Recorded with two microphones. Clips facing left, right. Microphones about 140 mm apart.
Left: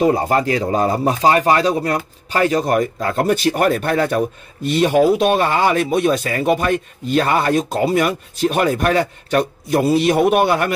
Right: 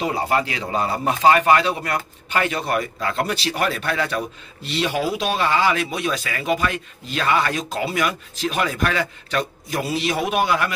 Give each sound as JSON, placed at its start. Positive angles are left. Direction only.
{"t": 0.0, "sound": "speech", "side_deg": 45}